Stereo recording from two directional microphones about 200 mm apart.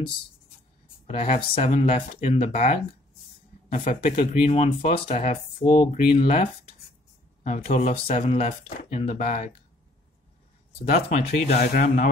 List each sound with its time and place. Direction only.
1.0 s speech: 30° left (ahead or behind)
3.8 s speech: 40° left (ahead or behind)
4.1 s speech: 30° left (ahead or behind)
11.1 s speech: 35° left (ahead or behind)